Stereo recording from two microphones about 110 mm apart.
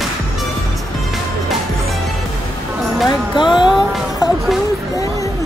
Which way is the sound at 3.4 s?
45° left (ahead or behind).